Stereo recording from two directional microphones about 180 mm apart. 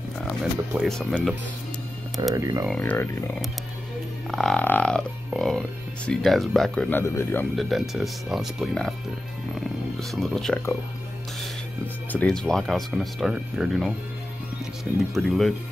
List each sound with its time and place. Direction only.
0.2 s speech: 5° left (ahead or behind)
2.3 s speech: 15° right (ahead or behind)
2.7 s speech: 10° left (ahead or behind)
7.5 s speech: centre (ahead or behind)
9.9 s speech: centre (ahead or behind)
12.1 s speech: 5° left (ahead or behind)
15.1 s speech: centre (ahead or behind)